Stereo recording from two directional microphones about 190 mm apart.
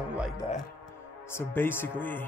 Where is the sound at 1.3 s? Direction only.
10° left (ahead or behind).